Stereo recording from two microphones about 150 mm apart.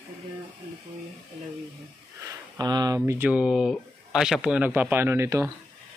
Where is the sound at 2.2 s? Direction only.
25° right (ahead or behind).